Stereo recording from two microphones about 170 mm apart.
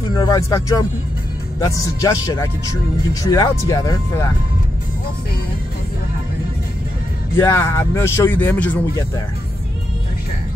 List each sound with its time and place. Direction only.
0.1 s speech: 25° left (ahead or behind)
7.3 s speech: 15° left (ahead or behind)